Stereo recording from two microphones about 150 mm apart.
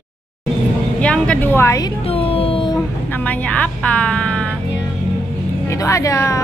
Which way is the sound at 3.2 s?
10° left (ahead or behind).